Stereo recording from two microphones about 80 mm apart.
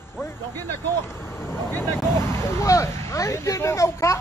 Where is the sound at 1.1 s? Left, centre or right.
Left.